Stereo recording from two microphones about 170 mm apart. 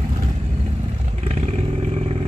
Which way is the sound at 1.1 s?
40° right (ahead or behind).